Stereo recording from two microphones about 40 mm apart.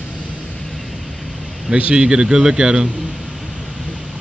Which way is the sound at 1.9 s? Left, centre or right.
Centre.